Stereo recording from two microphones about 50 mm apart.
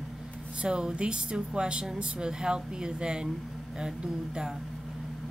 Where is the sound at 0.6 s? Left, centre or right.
Centre.